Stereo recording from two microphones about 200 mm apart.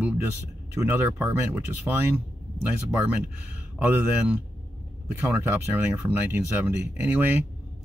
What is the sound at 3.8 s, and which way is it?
Speech, 10° right (ahead or behind).